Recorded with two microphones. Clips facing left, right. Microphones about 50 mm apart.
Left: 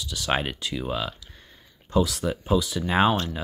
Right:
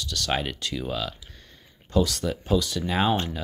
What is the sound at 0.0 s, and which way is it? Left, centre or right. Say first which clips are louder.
Speech: left 1 dB; centre.